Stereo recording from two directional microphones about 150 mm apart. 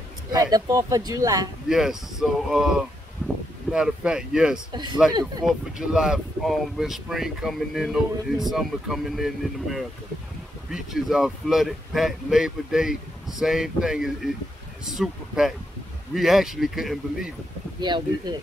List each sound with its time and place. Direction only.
0.3 s speech: 25° right (ahead or behind)
1.7 s speech: 5° right (ahead or behind)
3.7 s speech: 5° right (ahead or behind)
17.7 s speech: 30° right (ahead or behind)